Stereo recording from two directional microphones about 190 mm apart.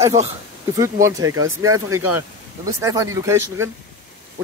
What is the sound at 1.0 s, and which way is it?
Speech, 15° right (ahead or behind).